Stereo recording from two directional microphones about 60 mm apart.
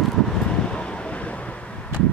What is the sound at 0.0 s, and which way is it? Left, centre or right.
Vehicle, centre.